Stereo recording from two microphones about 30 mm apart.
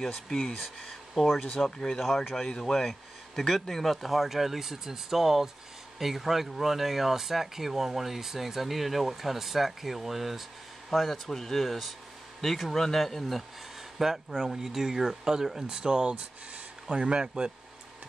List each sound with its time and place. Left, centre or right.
0.4 s speech: centre
1.6 s speech: left
3.9 s speech: centre
13.9 s speech: centre; by 17.3 s right